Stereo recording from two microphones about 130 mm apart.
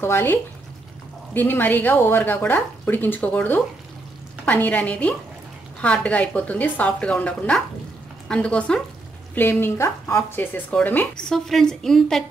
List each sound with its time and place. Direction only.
0.0 s speech: 20° left (ahead or behind)